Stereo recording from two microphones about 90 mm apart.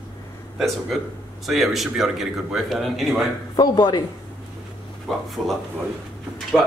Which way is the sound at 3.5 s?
50° left (ahead or behind).